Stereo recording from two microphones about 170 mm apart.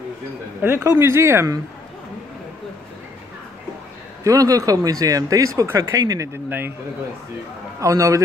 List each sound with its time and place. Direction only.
0.6 s speech: 10° right (ahead or behind)
4.2 s speech: 20° right (ahead or behind)
7.8 s speech: 20° right (ahead or behind)